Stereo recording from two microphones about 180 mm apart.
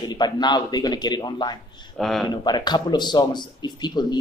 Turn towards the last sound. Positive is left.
turn(degrees=25)  # may be behind; listen again after turning